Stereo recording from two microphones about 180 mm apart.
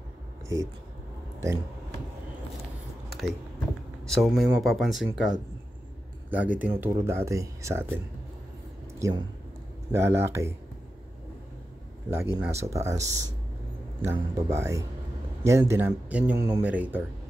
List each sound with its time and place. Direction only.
3.1 s a sound: centre (ahead or behind)
4.0 s speech: centre (ahead or behind)
6.3 s speech: 10° right (ahead or behind)
9.0 s speech: 15° right (ahead or behind)
12.1 s speech: 15° right (ahead or behind)